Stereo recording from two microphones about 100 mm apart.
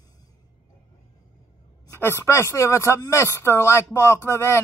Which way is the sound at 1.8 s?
25° left (ahead or behind).